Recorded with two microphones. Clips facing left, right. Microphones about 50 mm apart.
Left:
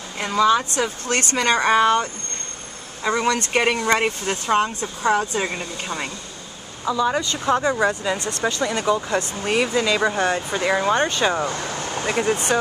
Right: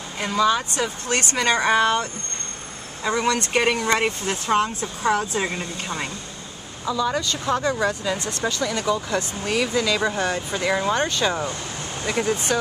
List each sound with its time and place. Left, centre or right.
0.2 s speech: centre
11.7 s vehicle: left
12.1 s speech: left